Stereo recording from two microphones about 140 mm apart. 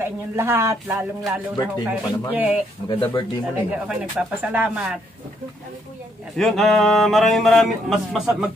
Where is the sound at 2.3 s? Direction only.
10° right (ahead or behind).